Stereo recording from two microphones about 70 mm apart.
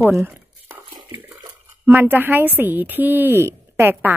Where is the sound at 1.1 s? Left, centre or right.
Right.